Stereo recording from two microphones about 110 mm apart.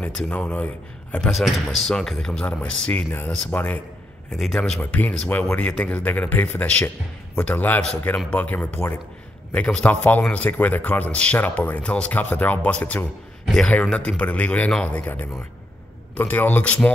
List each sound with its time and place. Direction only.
0.0 s a man's voice: 10° left (ahead or behind)
1.3 s a man's voice: centre (ahead or behind)
4.3 s a man's voice: 5° left (ahead or behind)